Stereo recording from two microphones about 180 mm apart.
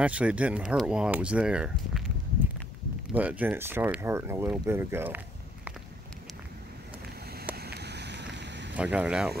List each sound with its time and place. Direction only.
0.0 s speech: 5° right (ahead or behind)
7.5 s vehicle: 65° right (ahead or behind)
8.7 s speech: 5° right (ahead or behind)